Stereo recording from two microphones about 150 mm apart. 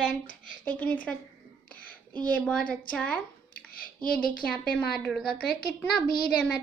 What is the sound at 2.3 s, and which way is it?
A woman's voice, 10° left (ahead or behind).